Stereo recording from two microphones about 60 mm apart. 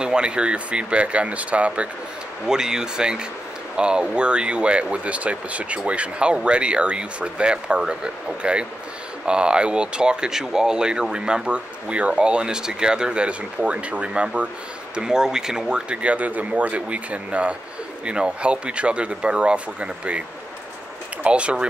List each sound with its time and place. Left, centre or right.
0.0 s speech: centre
2.4 s speech: centre